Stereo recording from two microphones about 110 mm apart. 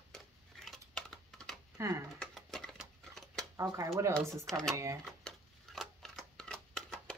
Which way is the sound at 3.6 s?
25° right (ahead or behind).